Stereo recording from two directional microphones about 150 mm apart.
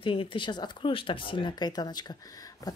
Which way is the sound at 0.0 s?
35° left (ahead or behind).